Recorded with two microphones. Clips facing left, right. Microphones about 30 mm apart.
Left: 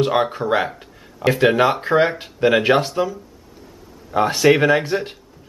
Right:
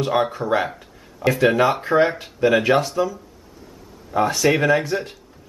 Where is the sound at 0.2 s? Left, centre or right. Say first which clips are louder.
Left 1 dB; left.